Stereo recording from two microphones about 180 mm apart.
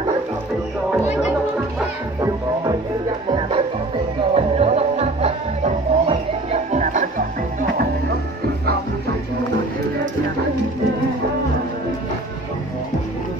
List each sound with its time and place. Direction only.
2.1 s music: 20° right (ahead or behind); by 7.2 s 45° right (ahead or behind)
7.7 s music: 60° right (ahead or behind)